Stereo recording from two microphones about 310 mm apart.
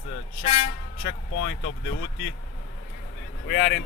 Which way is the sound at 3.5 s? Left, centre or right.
Left.